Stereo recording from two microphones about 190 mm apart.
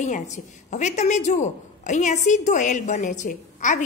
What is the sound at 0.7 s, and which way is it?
A woman's voice, 40° left (ahead or behind).